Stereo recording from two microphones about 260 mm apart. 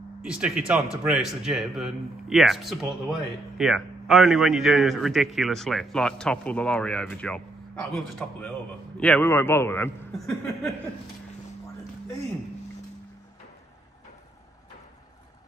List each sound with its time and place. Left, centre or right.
0.2 s a man's voice: centre